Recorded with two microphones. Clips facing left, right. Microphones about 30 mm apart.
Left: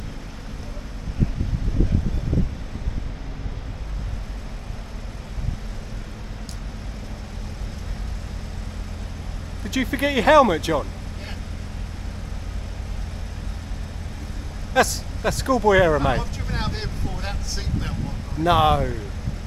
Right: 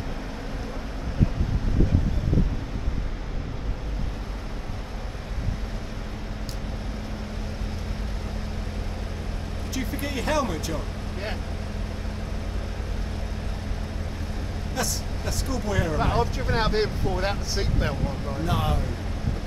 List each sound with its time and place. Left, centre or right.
9.8 s speech: left
14.7 s speech: left
16.2 s speech: centre
18.4 s speech: left